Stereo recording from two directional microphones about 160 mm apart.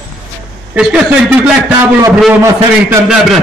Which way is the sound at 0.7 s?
5° right (ahead or behind).